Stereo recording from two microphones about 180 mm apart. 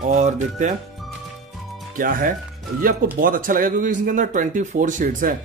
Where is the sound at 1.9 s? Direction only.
50° right (ahead or behind).